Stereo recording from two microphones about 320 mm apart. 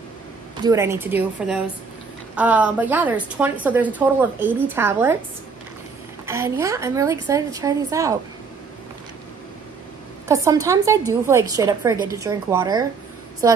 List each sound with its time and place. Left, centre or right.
0.6 s a woman's voice: centre
6.2 s a woman's voice: centre
10.2 s a woman's voice: centre